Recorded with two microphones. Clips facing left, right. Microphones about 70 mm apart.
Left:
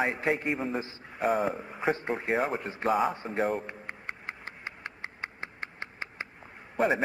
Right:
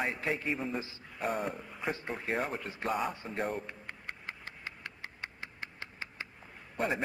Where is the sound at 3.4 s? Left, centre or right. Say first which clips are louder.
Left 6 dB; centre.